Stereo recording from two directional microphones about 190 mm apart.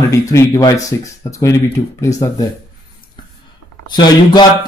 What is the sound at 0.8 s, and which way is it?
Speech, 15° left (ahead or behind).